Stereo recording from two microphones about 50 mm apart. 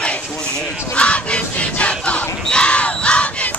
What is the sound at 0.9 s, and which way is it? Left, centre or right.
Battle cry, left.